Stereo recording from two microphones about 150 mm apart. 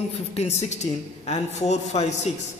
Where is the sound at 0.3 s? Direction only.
45° left (ahead or behind).